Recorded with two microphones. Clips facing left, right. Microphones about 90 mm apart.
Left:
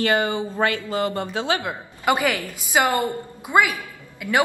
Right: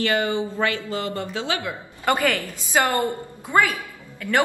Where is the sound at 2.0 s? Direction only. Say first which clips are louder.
Even; 10° left (ahead or behind).